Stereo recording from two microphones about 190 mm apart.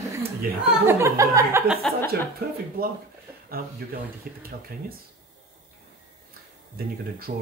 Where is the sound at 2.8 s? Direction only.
50° right (ahead or behind).